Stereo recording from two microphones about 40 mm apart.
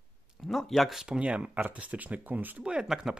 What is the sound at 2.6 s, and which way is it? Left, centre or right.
Speech, right.